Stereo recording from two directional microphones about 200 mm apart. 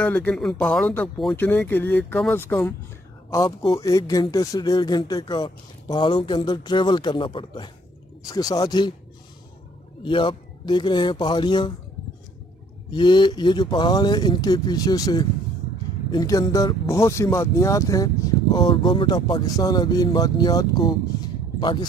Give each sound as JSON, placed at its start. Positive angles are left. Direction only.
{"t": 0.0, "sound": "speech", "side_deg": 10}
{"t": 3.4, "sound": "speech", "side_deg": 30}
{"t": 3.8, "sound": "speech", "side_deg": 15}
{"t": 10.0, "sound": "speech", "side_deg": 25}
{"t": 12.9, "sound": "speech", "side_deg": 20}